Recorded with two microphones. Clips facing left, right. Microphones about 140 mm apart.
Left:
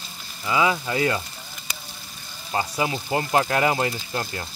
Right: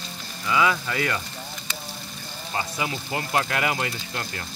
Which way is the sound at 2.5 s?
30° left (ahead or behind).